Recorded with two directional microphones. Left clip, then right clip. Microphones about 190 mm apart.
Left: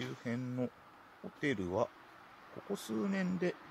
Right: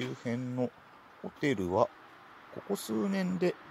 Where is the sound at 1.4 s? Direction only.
15° right (ahead or behind).